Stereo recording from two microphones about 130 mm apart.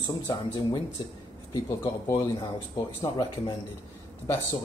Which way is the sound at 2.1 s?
35° left (ahead or behind).